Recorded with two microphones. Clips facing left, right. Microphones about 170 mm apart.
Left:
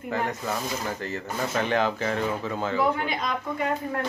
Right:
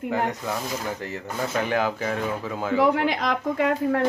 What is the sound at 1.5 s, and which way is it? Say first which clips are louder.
Speech: even; 10° right (ahead or behind).